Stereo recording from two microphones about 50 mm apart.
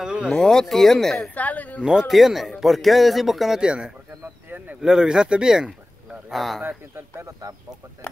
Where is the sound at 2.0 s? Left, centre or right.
Centre.